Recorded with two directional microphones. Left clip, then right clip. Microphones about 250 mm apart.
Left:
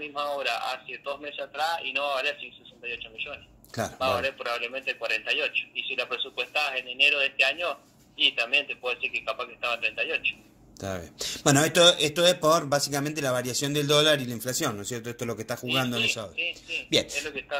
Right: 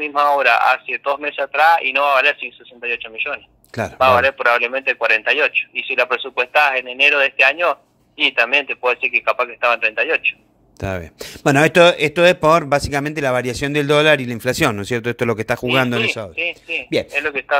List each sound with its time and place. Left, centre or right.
0.0 s a man's voice: right
10.8 s speech: right
15.6 s a man's voice: right